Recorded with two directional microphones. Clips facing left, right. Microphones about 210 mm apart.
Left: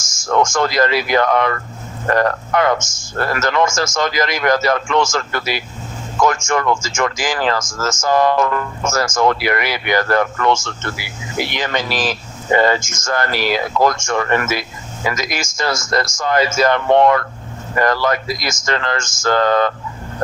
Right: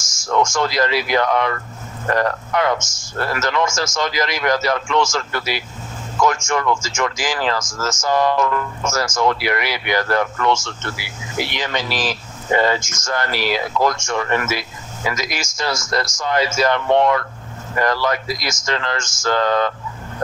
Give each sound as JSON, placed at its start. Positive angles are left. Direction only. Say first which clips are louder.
{"t": 0.0, "sound": "speech", "louder": "left 2 dB", "side_deg": 50}